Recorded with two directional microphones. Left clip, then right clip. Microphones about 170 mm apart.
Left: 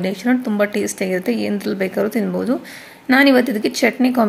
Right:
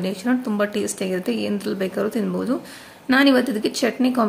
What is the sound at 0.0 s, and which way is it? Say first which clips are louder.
A woman's voice: left 4 dB; 15° left (ahead or behind).